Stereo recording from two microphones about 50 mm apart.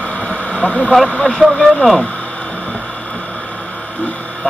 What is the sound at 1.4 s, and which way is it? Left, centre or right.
Speech, centre.